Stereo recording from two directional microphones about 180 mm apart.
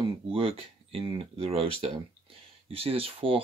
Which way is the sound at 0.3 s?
30° right (ahead or behind).